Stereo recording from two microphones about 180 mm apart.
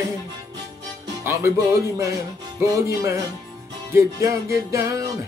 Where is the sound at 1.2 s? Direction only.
15° right (ahead or behind).